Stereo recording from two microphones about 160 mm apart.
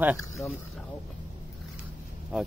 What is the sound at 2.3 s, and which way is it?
Speech, 5° right (ahead or behind).